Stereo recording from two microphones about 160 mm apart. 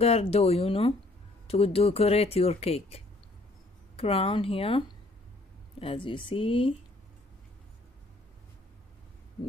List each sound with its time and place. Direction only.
0.0 s speech: 40° left (ahead or behind)